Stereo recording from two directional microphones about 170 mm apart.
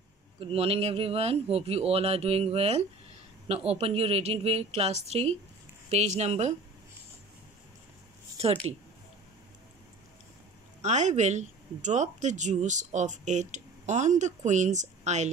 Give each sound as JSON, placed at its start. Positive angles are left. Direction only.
{"t": 0.4, "sound": "speech", "side_deg": -35}
{"t": 10.8, "sound": "speech", "side_deg": -45}